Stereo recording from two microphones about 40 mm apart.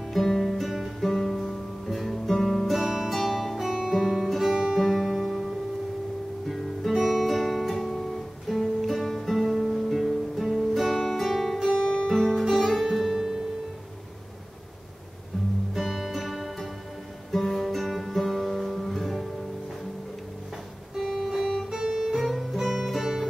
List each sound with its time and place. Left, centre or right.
0.1 s guitar: centre
2.8 s music: centre
3.1 s music: centre
4.0 s guitar: centre
4.3 s music: centre
6.9 s music: centre
9.5 s music: centre
11.8 s music: left
12.1 s music: centre
12.4 s music: centre
15.7 s music: centre
17.3 s guitar: centre
21.2 s music: centre
22.0 s guitar: centre